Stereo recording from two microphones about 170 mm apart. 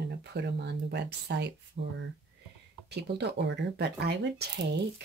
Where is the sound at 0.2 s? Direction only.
80° right.